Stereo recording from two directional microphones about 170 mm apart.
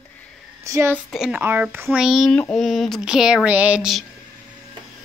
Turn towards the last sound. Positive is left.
turn(degrees=-5)  # may be behind; listen again after turning